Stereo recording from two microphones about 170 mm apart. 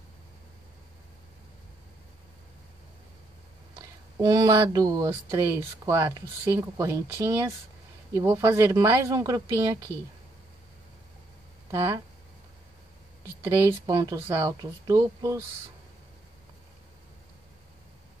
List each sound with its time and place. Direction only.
4.2 s speech: 20° right (ahead or behind)
11.7 s speech: 15° right (ahead or behind)
13.4 s speech: 20° right (ahead or behind)